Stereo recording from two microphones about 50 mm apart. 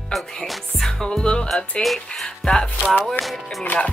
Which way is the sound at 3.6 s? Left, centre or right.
Left.